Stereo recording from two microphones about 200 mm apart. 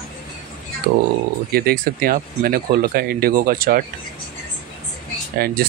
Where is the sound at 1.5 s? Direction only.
50° right (ahead or behind).